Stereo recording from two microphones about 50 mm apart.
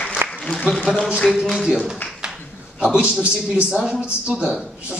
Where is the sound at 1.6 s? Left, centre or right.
Centre.